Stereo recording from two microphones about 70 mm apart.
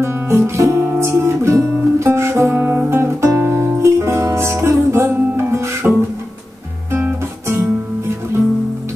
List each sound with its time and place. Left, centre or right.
0.0 s music: right
2.6 s music: right
6.9 s guitar: right